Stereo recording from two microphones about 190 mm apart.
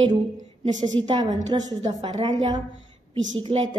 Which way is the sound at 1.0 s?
20° right (ahead or behind).